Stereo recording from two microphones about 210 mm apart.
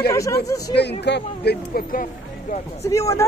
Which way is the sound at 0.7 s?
55° left (ahead or behind).